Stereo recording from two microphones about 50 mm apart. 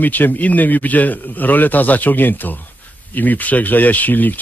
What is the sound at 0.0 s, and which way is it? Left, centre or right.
Speech, left.